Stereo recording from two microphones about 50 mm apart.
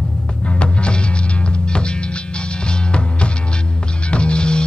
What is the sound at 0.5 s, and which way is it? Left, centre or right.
Music, left.